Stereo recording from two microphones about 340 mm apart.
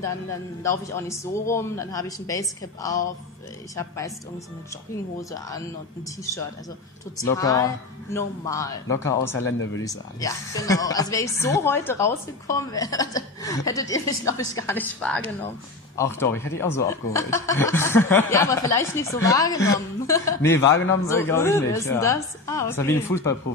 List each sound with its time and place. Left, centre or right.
0.7 s a woman's voice: centre
7.2 s a woman's voice: centre
9.4 s speech: left
9.8 s a woman's voice: centre